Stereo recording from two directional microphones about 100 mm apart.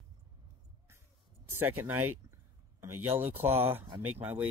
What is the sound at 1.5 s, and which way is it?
Speech, 20° right (ahead or behind).